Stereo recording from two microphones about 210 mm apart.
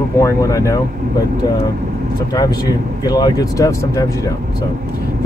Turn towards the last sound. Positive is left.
turn(degrees=15)  # may be behind; listen again after turning